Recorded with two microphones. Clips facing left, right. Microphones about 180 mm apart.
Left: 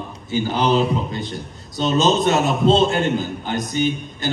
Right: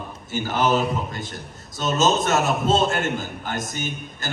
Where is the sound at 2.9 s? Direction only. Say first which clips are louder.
Left 5 dB; 45° right (ahead or behind).